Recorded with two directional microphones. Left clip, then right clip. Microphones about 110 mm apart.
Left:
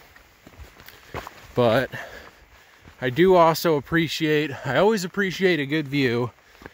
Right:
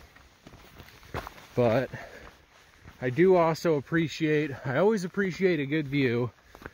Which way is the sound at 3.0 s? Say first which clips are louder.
Left 6 dB; 55° left (ahead or behind).